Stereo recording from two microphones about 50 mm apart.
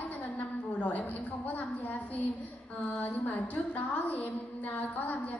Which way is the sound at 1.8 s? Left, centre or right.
Left.